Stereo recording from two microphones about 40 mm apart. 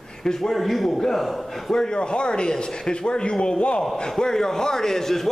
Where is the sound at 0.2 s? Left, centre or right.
Centre.